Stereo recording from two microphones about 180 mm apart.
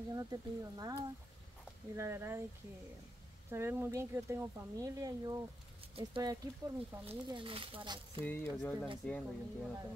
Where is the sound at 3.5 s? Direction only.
15° right (ahead or behind).